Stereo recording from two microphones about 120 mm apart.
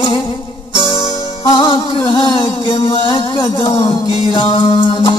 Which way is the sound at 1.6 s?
45° left (ahead or behind).